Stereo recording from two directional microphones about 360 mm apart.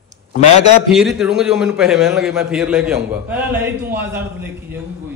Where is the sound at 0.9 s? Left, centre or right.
Centre.